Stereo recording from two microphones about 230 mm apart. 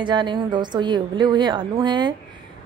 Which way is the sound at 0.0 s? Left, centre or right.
Centre.